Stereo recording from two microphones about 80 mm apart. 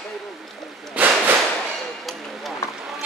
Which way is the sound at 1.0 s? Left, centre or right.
Centre.